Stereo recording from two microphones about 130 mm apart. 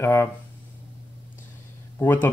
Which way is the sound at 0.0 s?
20° left (ahead or behind).